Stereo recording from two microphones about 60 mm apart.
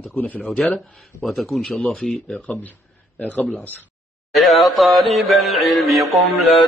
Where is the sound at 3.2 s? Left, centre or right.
Left.